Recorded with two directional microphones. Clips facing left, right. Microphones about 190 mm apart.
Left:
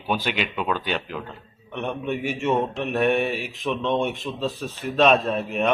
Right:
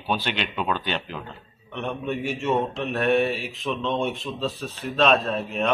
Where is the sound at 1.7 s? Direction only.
15° left (ahead or behind).